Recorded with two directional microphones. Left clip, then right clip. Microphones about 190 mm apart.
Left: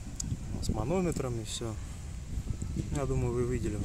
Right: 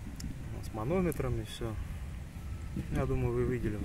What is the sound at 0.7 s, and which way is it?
Speech, 10° left (ahead or behind).